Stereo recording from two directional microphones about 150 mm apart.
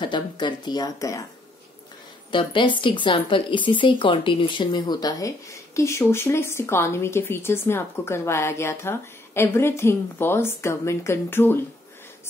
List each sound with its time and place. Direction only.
0.0 s speech: 30° left (ahead or behind)
2.3 s a woman's voice: 35° left (ahead or behind); by 11.6 s 15° left (ahead or behind)